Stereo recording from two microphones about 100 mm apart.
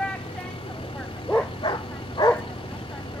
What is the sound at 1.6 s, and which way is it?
Bow-wow, 50° left (ahead or behind).